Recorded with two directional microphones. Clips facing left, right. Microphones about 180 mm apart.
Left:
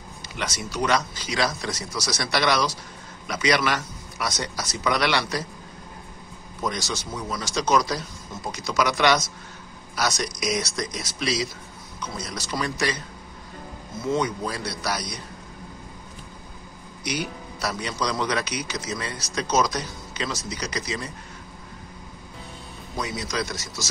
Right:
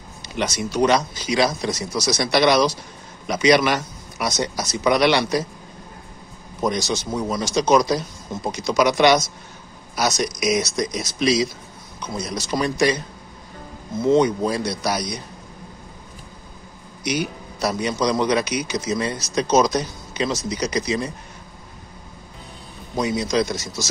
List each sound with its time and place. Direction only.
0.4 s a man's voice: 20° right (ahead or behind)
6.6 s a man's voice: 20° right (ahead or behind)
14.0 s a man's voice: 20° right (ahead or behind)
17.0 s speech: 15° right (ahead or behind)
22.9 s a man's voice: 20° right (ahead or behind)